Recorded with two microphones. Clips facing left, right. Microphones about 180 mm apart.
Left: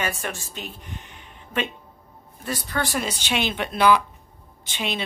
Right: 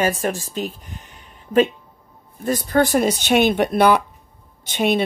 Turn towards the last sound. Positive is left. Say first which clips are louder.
# right 10 dB
turn(degrees=-50)  # may be behind; listen again after turning